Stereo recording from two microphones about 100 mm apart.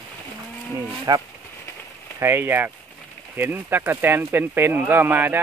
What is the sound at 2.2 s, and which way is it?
Speech, 25° right (ahead or behind).